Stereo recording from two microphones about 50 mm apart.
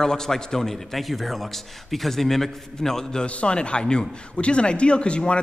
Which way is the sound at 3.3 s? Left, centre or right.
Left.